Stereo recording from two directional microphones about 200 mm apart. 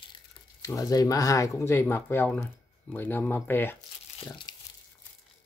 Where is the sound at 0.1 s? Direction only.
15° left (ahead or behind).